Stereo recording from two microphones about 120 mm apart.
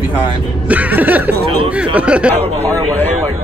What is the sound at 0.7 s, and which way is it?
Music, 15° right (ahead or behind).